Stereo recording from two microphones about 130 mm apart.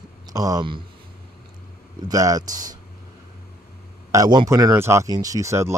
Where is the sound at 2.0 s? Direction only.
25° right (ahead or behind).